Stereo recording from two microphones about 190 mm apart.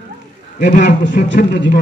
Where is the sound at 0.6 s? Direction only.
45° left (ahead or behind).